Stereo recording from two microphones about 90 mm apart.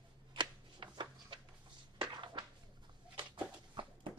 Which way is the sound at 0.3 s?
60° right (ahead or behind).